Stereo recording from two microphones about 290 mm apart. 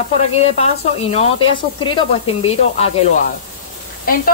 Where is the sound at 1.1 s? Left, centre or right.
Centre.